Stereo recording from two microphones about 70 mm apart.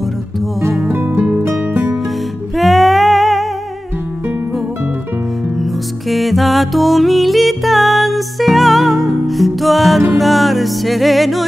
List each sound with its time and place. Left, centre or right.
0.9 s music: right
2.5 s music: centre
5.6 s music: centre